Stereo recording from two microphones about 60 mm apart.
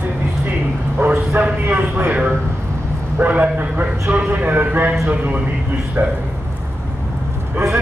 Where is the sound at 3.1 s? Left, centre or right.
Right.